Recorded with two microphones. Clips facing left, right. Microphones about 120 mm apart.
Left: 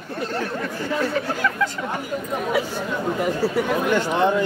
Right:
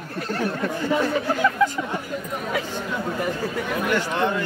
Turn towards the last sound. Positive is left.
turn(degrees=15)  # may be behind; listen again after turning